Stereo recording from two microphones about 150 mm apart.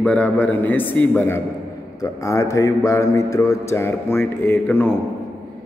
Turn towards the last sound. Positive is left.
turn(degrees=15)  # may be behind; listen again after turning